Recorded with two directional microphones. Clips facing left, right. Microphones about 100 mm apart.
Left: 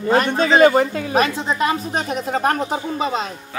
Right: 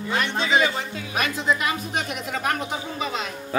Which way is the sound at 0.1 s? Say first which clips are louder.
Left 7 dB; 45° left (ahead or behind).